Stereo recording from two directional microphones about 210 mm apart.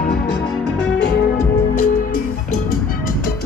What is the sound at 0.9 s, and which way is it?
Music, 45° left (ahead or behind).